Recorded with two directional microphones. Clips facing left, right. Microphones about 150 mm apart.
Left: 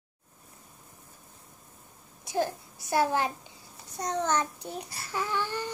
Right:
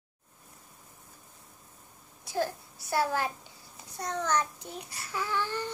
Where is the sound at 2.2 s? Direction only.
20° left (ahead or behind).